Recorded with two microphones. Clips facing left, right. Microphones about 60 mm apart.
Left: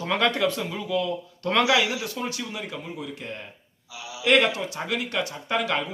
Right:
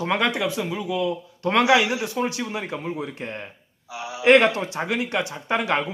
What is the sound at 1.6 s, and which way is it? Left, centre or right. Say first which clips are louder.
A man's voice: right 5 dB; right.